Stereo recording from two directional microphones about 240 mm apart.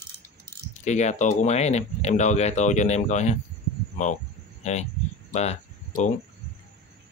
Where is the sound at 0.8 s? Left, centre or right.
Left.